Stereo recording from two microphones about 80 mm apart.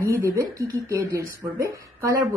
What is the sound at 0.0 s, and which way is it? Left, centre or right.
Speech, right.